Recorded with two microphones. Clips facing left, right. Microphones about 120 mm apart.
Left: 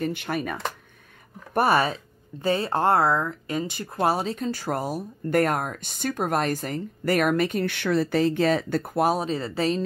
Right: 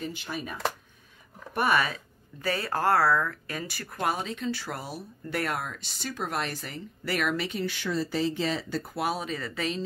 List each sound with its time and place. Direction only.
0.0 s speech: 60° left (ahead or behind)
1.5 s speech: 35° left (ahead or behind)